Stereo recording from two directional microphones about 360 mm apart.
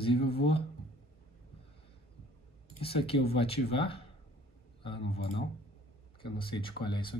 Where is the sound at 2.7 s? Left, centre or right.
Centre.